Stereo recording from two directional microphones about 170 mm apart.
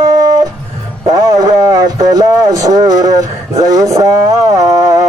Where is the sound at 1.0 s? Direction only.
20° right (ahead or behind).